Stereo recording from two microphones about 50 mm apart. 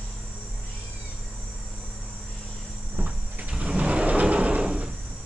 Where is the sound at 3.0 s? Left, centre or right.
Right.